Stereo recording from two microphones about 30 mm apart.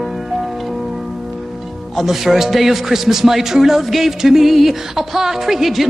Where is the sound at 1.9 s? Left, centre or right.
Centre.